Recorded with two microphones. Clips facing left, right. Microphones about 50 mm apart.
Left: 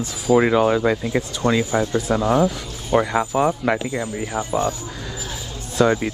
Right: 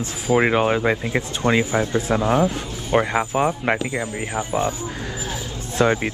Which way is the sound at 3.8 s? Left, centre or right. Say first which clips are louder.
Even; right.